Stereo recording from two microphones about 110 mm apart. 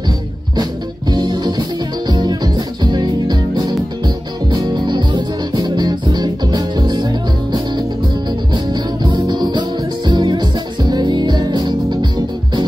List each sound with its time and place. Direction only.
1.1 s music: 40° right (ahead or behind)